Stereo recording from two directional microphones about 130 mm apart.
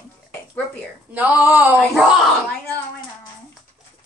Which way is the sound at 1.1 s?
15° right (ahead or behind).